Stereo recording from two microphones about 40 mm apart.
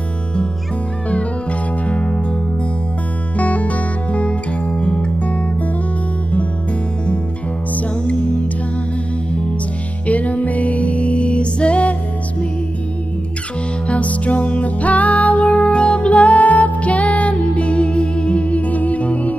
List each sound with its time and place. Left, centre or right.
1.9 s music: left
3.3 s music: left
8.0 s music: left
10.0 s music: left
13.8 s music: left